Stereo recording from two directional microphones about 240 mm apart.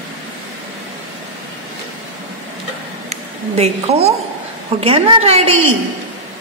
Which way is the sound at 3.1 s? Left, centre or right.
Right.